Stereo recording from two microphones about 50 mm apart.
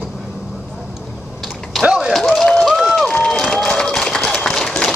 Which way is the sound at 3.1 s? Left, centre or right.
Centre.